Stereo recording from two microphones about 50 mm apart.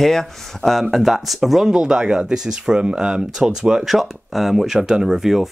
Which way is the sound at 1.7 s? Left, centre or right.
Centre.